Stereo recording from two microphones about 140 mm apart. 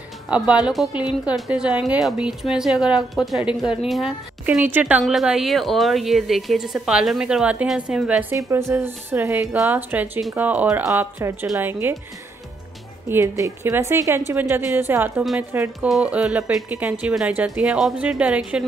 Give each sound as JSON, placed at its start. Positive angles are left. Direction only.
{"t": 0.3, "sound": "a woman's voice", "side_deg": -5}
{"t": 8.3, "sound": "a woman's voice", "side_deg": -20}
{"t": 13.1, "sound": "a woman's voice", "side_deg": -20}